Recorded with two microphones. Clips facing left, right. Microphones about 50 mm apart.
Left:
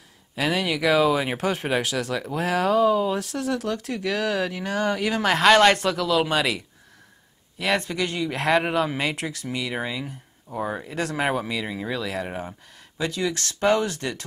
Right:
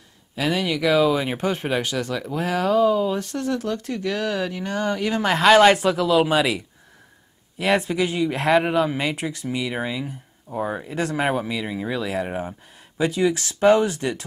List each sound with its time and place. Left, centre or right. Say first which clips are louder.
0.4 s speech: right 1 dB; centre